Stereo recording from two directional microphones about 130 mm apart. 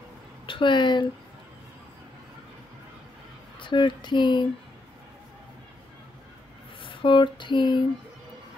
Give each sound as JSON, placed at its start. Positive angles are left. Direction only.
{"t": 0.5, "sound": "speech", "side_deg": 40}
{"t": 3.5, "sound": "speech", "side_deg": 40}
{"t": 6.8, "sound": "a sound", "side_deg": 40}